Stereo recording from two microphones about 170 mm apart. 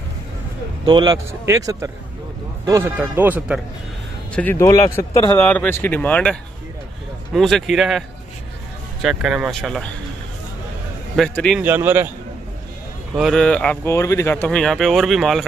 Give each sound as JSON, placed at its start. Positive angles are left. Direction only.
{"t": 0.8, "sound": "a man's voice", "side_deg": -25}
{"t": 4.4, "sound": "speech", "side_deg": 15}
{"t": 5.4, "sound": "speech", "side_deg": 10}
{"t": 7.3, "sound": "speech", "side_deg": 0}
{"t": 9.0, "sound": "speech", "side_deg": -5}
{"t": 11.1, "sound": "speech", "side_deg": 5}
{"t": 11.6, "sound": "speech", "side_deg": -10}
{"t": 13.1, "sound": "speech", "side_deg": 0}
{"t": 14.3, "sound": "speech", "side_deg": 5}